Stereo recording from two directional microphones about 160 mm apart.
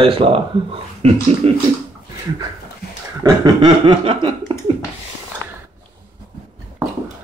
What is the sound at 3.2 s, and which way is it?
Speech, 25° right (ahead or behind).